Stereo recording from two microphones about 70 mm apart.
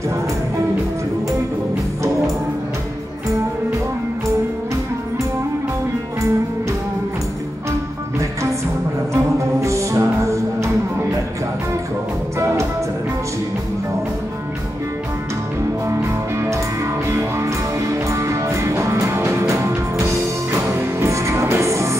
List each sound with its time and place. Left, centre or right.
9.1 s music: right
12.4 s music: right
15.9 s music: right